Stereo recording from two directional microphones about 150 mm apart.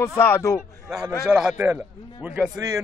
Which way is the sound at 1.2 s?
5° right (ahead or behind).